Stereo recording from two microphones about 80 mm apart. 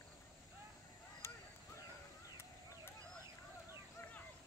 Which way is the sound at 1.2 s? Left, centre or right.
Left.